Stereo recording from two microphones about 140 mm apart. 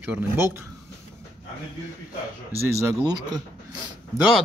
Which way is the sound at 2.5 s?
20° right (ahead or behind).